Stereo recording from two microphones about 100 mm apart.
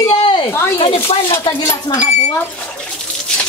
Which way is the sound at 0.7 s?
70° left (ahead or behind).